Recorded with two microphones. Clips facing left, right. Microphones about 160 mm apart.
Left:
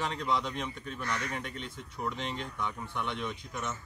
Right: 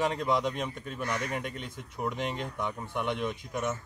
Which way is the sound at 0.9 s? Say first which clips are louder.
Right 3 dB; 15° right (ahead or behind).